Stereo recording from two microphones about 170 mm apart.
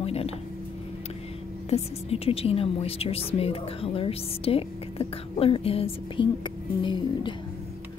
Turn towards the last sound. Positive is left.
turn(degrees=30)  # may be behind; listen again after turning